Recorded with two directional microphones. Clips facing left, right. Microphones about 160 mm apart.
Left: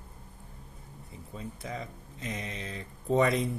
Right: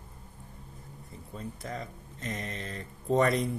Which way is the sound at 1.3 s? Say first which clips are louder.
Even; centre (ahead or behind).